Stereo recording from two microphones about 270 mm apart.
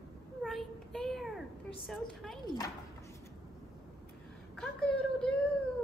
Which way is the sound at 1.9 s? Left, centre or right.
Centre.